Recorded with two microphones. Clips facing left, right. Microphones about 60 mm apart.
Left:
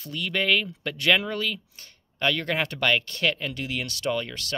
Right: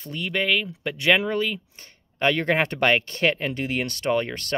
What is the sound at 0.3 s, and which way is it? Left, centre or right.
Speech, centre.